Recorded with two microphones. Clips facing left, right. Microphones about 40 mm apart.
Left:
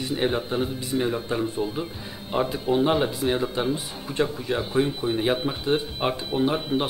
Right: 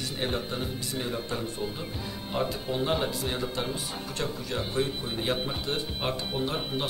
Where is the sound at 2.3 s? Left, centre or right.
Centre.